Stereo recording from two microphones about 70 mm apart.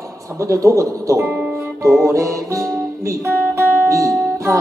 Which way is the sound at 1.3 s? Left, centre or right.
Right.